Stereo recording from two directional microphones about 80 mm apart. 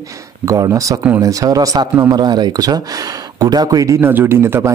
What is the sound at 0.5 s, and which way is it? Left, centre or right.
Speech, right.